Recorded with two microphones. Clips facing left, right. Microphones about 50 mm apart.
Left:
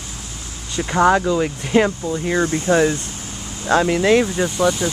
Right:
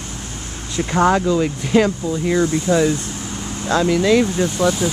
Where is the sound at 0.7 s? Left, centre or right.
Centre.